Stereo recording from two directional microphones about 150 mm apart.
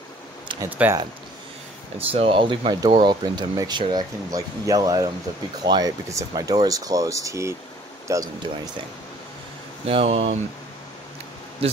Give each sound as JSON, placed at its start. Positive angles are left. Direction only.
{"t": 0.6, "sound": "speech", "side_deg": -10}
{"t": 2.0, "sound": "speech", "side_deg": -40}
{"t": 9.8, "sound": "speech", "side_deg": -40}